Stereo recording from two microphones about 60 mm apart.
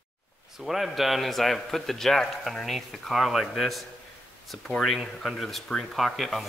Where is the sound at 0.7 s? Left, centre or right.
Centre.